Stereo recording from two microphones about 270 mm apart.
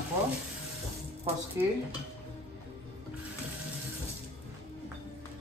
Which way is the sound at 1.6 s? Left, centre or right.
Centre.